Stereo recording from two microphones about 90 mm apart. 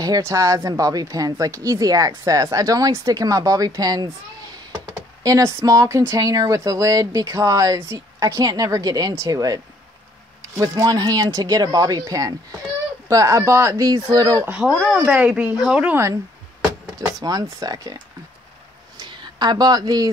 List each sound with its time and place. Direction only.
0.0 s speech: 40° right (ahead or behind)
10.6 s speech: 45° right (ahead or behind)
14.4 s speech: 20° right (ahead or behind)
14.7 s speech: 5° left (ahead or behind)
15.0 s speech: 15° right (ahead or behind)
15.9 s speech: 30° right (ahead or behind)
17.2 s speech: 45° right (ahead or behind)
18.9 s a sound: 55° right (ahead or behind)